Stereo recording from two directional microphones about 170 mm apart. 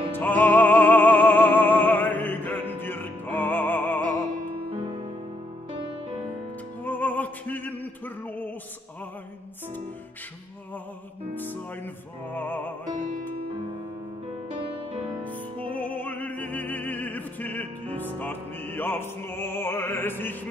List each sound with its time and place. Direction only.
0.1 s music: 10° left (ahead or behind)
4.6 s music: 30° right (ahead or behind)
6.8 s music: 10° left (ahead or behind)
11.3 s music: 10° left (ahead or behind)
15.7 s music: 10° left (ahead or behind)